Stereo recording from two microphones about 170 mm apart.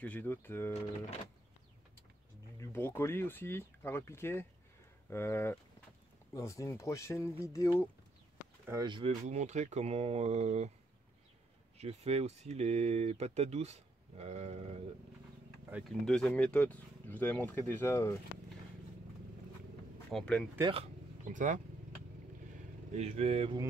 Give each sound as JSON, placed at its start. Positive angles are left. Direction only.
{"t": 0.0, "sound": "speech", "side_deg": 10}
{"t": 2.6, "sound": "speech", "side_deg": 15}
{"t": 8.6, "sound": "speech", "side_deg": -25}
{"t": 9.2, "sound": "speech", "side_deg": -45}
{"t": 11.8, "sound": "speech", "side_deg": -40}
{"t": 16.1, "sound": "speech", "side_deg": 5}
{"t": 20.1, "sound": "speech", "side_deg": 5}
{"t": 20.6, "sound": "speech", "side_deg": -35}
{"t": 22.9, "sound": "speech", "side_deg": -40}